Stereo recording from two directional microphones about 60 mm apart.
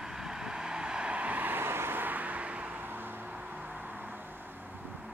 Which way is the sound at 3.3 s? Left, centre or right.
Right.